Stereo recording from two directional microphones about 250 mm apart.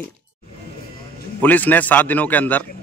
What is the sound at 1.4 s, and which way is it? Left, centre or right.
A man's voice, centre.